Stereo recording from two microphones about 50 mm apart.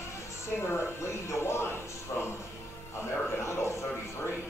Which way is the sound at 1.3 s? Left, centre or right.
Left.